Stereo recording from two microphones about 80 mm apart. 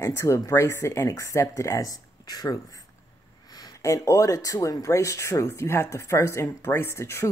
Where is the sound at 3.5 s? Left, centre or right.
Left.